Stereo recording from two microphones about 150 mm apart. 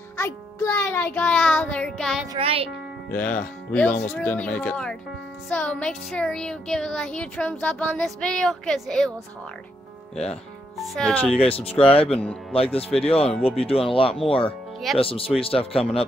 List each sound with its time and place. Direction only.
0.2 s a child's voice: 20° left (ahead or behind); by 2.2 s 5° left (ahead or behind)
2.3 s a child's voice: 40° right (ahead or behind)
3.1 s a child's voice: 10° left (ahead or behind)
5.5 s music: 10° left (ahead or behind)
10.8 s music: 5° left (ahead or behind)
11.3 s speech: 40° left (ahead or behind)